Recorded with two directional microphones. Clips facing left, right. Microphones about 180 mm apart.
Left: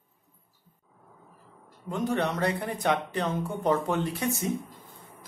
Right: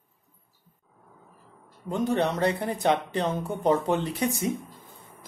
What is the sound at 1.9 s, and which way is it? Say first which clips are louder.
Speech: right 3 dB; 25° right (ahead or behind).